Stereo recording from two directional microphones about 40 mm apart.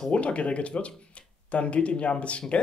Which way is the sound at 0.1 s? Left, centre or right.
Left.